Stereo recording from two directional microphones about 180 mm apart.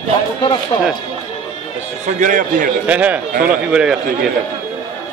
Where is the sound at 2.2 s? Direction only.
45° right (ahead or behind).